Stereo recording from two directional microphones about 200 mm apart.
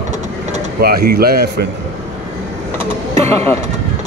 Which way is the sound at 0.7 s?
50° right (ahead or behind).